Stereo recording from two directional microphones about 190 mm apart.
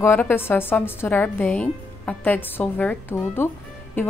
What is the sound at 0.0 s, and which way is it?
A woman's voice, 10° left (ahead or behind).